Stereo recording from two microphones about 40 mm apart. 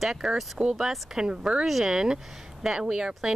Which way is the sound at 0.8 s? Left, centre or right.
Centre.